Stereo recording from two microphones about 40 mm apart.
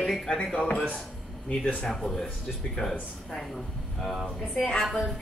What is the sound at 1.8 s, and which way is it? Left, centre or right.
Speech, centre.